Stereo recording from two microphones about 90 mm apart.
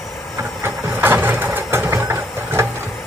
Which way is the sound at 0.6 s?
25° right (ahead or behind).